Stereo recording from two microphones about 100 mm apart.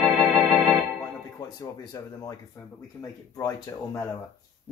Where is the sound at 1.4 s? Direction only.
45° left (ahead or behind).